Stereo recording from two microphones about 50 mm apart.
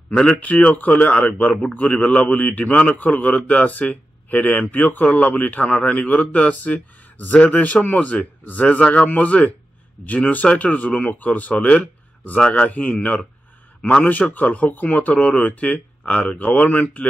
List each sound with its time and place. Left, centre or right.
0.1 s a man's voice: left
1.4 s a man's voice: centre